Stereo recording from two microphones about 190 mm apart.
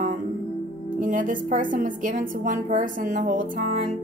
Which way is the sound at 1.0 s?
45° right (ahead or behind).